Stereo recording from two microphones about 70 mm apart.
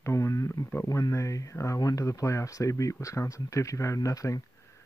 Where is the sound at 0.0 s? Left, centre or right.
Left.